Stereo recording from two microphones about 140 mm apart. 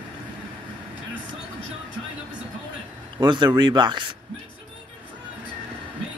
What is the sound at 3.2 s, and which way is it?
Speech, 35° right (ahead or behind).